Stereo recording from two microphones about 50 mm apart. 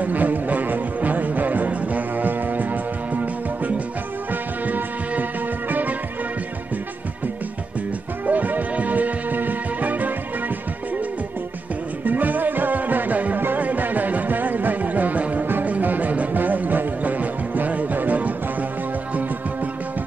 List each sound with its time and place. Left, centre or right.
0.0 s music: right
8.3 s music: right
12.0 s music: right
15.4 s music: right